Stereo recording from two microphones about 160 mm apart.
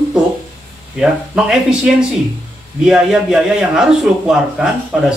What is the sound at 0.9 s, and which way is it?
A man's voice, 5° right (ahead or behind).